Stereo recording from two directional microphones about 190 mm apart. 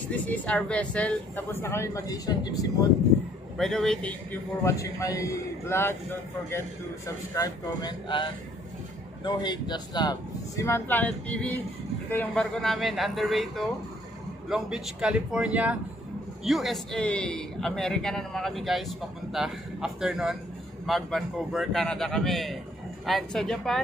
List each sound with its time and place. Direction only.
0.1 s speech: 10° left (ahead or behind)
3.5 s a man's voice: centre (ahead or behind)
4.3 s speech: 15° left (ahead or behind)
7.3 s speech: 20° left (ahead or behind)
10.6 s a man's voice: 10° left (ahead or behind)